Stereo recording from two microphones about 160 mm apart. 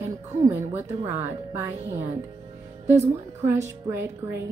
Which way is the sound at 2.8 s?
15° right (ahead or behind).